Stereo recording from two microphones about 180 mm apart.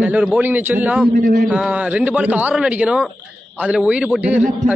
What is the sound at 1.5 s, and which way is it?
Speech, 5° right (ahead or behind).